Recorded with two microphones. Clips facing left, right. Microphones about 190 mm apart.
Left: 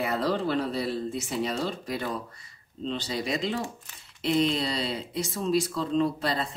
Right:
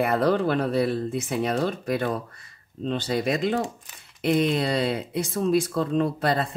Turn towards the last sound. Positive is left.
turn(degrees=-55)  # may be behind; listen again after turning